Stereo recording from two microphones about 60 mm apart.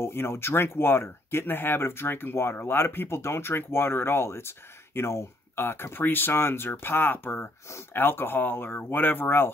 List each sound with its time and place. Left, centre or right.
0.0 s speech: left